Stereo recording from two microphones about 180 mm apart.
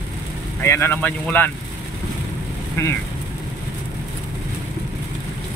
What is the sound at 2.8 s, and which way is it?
Speech, 15° left (ahead or behind).